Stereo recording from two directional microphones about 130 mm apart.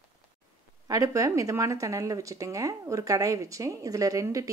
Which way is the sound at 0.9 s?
25° right (ahead or behind).